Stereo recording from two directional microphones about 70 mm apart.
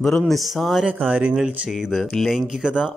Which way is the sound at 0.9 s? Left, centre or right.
Centre.